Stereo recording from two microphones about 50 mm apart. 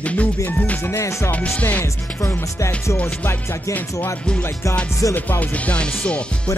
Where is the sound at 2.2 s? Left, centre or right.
Left.